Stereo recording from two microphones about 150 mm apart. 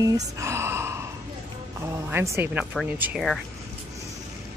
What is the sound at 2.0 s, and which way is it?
Speech, 15° right (ahead or behind).